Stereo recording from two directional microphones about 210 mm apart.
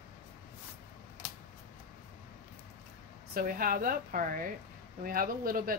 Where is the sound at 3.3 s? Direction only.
45° right (ahead or behind).